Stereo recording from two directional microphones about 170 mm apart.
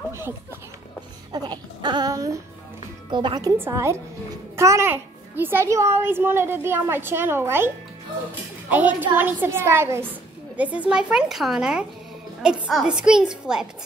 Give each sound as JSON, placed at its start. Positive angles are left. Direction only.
{"t": 1.3, "sound": "a sound", "side_deg": -25}
{"t": 3.1, "sound": "speech", "side_deg": -30}
{"t": 3.5, "sound": "a child's voice", "side_deg": -15}